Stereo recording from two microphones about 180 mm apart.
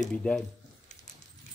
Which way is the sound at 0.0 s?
5° left (ahead or behind).